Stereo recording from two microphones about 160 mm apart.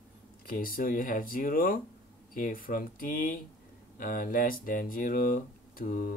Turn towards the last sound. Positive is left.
turn(degrees=65)  # may be behind; listen again after turning